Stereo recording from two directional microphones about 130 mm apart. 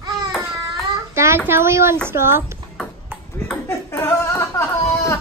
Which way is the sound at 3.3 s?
20° left (ahead or behind).